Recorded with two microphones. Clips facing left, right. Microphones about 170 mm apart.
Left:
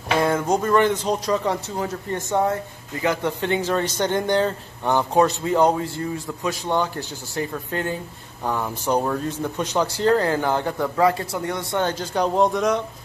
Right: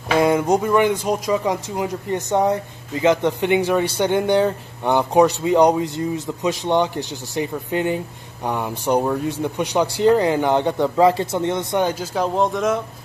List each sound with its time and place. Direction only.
0.2 s speech: 15° right (ahead or behind)